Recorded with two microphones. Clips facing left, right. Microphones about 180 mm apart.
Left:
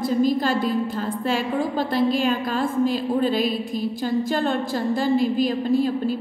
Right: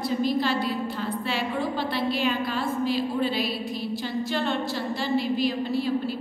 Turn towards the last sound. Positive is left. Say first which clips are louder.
# left 5 dB
turn(degrees=45)  # may be behind; listen again after turning